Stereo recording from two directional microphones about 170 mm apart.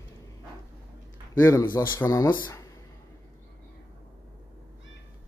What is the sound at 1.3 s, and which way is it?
A man's voice, 15° left (ahead or behind).